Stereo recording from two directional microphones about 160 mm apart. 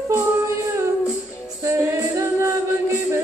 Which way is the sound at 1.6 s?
20° right (ahead or behind).